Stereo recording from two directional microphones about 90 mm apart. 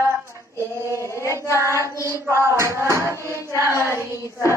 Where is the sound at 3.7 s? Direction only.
30° left (ahead or behind).